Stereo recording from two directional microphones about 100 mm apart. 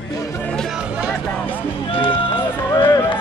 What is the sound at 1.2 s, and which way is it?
Music, 10° left (ahead or behind).